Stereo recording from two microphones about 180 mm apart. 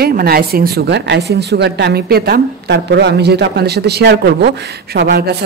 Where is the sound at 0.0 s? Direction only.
55° right (ahead or behind).